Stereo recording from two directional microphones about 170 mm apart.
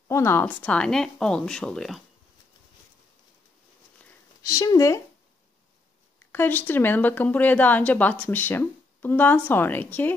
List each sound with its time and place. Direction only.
0.1 s speech: 15° left (ahead or behind)
4.4 s speech: 20° left (ahead or behind)
6.1 s a woman's voice: 15° left (ahead or behind)